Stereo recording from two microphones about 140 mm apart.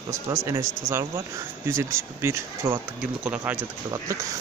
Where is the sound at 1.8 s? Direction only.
20° right (ahead or behind).